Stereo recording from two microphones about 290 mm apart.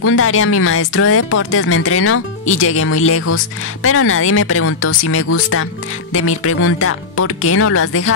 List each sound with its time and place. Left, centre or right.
0.0 s speech: left